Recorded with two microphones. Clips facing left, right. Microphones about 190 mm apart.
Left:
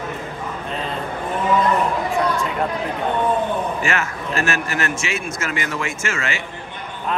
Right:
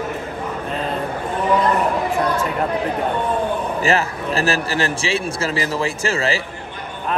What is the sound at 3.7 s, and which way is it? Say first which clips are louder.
A man's voice: right 4 dB; 35° right (ahead or behind).